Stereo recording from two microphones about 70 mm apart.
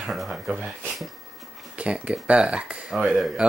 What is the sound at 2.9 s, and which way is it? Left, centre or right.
Speech, centre.